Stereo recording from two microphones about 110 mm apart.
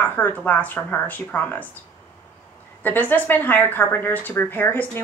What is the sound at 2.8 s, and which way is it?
A woman's voice, 15° left (ahead or behind).